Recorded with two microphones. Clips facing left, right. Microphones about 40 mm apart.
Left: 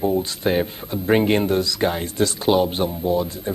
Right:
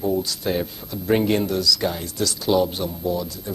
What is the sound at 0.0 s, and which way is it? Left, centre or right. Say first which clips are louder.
Speech: left 2 dB; left.